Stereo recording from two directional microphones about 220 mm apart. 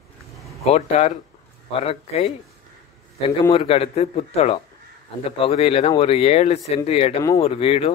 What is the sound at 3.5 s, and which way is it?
Speech, 25° left (ahead or behind).